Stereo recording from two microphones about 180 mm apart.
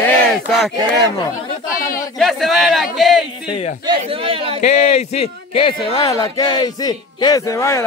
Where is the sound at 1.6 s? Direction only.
50° left (ahead or behind).